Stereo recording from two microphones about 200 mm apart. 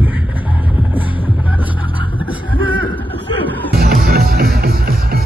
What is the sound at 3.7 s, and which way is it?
Music, 50° right (ahead or behind).